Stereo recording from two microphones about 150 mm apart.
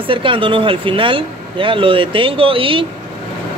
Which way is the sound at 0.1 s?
35° right (ahead or behind).